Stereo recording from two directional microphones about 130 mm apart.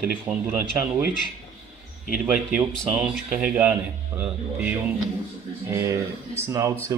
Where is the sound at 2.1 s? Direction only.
10° right (ahead or behind).